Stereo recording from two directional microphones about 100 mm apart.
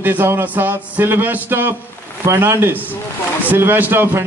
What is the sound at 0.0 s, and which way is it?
Speech, 20° right (ahead or behind).